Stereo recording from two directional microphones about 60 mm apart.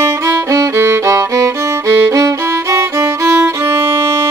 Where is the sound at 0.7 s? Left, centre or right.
Right.